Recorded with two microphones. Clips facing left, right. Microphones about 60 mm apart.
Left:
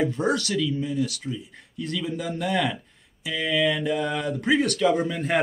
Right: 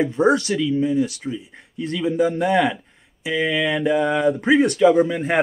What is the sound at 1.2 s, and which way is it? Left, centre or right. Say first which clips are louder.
Speech: right 4 dB; right.